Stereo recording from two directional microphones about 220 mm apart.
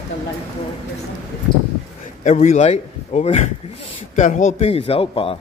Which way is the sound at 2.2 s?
30° left (ahead or behind).